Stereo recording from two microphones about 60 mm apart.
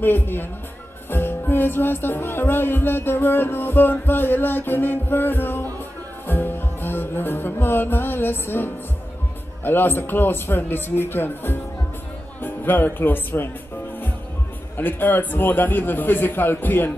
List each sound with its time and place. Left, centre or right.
0.0 s a man's voice: left
1.1 s music: left
9.6 s a man's voice: left
14.8 s a man's voice: left